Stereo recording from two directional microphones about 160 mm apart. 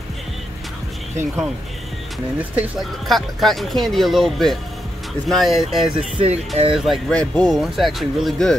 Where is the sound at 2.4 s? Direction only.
10° right (ahead or behind).